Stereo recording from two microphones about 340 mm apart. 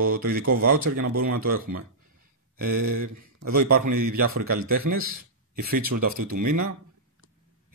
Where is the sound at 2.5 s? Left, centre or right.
Right.